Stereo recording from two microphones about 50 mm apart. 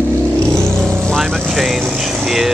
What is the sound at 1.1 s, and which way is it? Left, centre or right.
Vehicle, centre.